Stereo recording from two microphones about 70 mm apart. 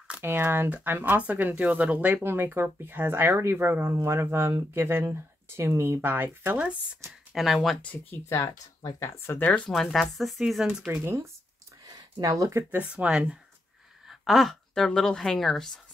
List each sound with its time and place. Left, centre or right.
0.2 s speech: right
2.2 s speech: right
7.1 s speech: centre
7.7 s speech: left
8.1 s speech: left
9.7 s speech: centre
11.8 s a sound: right
12.7 s speech: centre
14.0 s a sound: centre
15.0 s speech: centre